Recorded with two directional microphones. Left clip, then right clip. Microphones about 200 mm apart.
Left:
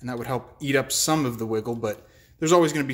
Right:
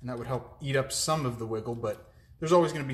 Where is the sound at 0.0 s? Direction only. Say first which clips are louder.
Left 5 dB; 35° left (ahead or behind).